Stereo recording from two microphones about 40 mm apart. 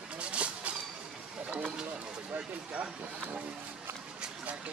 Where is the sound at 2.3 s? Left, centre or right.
Right.